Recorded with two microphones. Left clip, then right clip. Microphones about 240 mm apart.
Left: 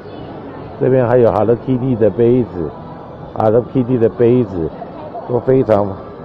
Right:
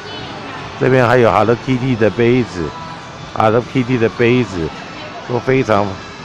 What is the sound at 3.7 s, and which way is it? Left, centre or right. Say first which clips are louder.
Speech: left 1 dB; right.